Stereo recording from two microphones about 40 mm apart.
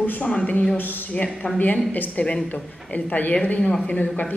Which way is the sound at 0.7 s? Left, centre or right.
Left.